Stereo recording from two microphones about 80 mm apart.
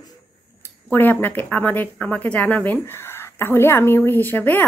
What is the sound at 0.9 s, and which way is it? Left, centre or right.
A woman's voice, left.